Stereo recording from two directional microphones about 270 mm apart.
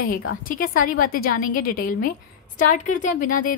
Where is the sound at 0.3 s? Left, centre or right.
Left.